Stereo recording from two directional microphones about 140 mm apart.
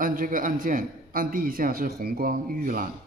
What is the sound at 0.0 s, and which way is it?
A man's voice, 80° right.